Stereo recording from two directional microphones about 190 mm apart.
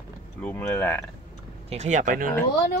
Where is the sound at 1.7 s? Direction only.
40° right (ahead or behind).